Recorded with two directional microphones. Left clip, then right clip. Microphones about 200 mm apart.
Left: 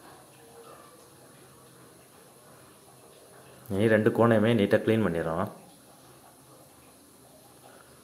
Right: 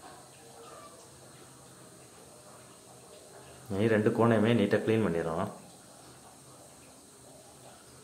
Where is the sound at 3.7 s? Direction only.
20° left (ahead or behind).